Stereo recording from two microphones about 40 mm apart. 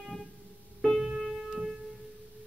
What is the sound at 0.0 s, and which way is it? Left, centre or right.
Music, centre.